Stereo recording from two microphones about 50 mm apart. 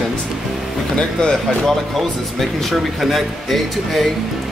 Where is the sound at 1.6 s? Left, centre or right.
Centre.